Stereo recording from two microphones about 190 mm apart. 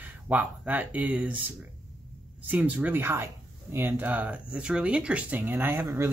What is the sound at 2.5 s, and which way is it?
Speech, 10° right (ahead or behind).